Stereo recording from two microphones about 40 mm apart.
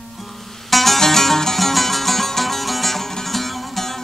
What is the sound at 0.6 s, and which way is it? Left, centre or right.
Music, centre.